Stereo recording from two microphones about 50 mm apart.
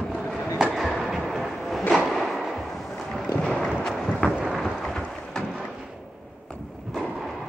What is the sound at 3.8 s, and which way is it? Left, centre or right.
Wind noise, centre.